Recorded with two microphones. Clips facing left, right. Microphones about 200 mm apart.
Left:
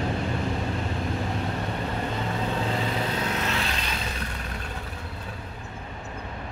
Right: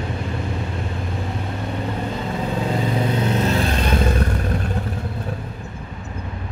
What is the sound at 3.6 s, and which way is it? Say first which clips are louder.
Vehicle: right 11 dB; 50° right (ahead or behind).